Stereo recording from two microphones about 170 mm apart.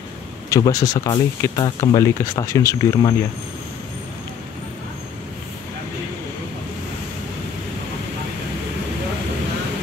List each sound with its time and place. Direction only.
0.5 s speech: 20° left (ahead or behind)